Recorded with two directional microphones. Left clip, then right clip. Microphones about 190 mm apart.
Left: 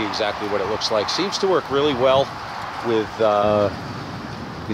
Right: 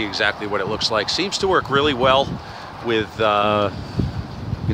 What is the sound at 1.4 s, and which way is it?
Speech, 30° right (ahead or behind).